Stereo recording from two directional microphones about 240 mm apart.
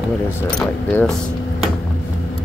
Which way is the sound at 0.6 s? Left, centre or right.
Centre.